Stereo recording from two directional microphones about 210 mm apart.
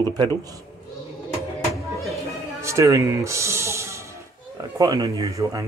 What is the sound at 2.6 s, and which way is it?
Music, 15° right (ahead or behind).